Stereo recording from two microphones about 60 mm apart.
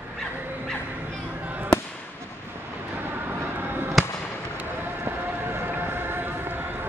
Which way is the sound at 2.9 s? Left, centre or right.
Right.